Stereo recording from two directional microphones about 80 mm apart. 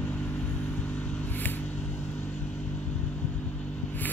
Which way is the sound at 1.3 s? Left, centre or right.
Left.